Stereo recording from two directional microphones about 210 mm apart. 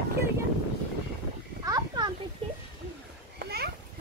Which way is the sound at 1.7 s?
20° right (ahead or behind).